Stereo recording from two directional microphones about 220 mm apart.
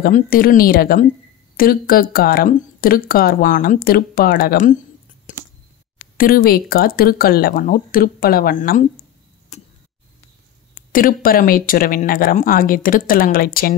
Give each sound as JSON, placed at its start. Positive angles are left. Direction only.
{"t": 0.0, "sound": "speech", "side_deg": 40}
{"t": 5.3, "sound": "a sound", "side_deg": 35}
{"t": 6.1, "sound": "speech", "side_deg": 40}
{"t": 10.9, "sound": "speech", "side_deg": 40}